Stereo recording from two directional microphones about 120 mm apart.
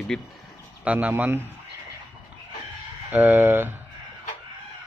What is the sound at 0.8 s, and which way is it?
Speech, 10° right (ahead or behind).